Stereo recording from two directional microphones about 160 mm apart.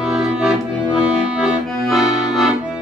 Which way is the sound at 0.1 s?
5° right (ahead or behind).